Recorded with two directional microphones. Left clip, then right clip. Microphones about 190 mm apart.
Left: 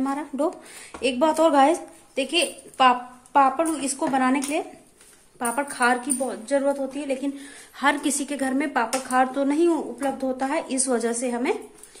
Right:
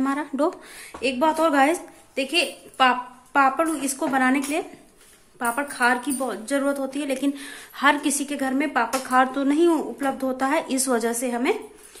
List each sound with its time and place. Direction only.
0.0 s speech: 5° right (ahead or behind)
6.2 s a woman's voice: 15° right (ahead or behind)
7.7 s a woman's voice: centre (ahead or behind)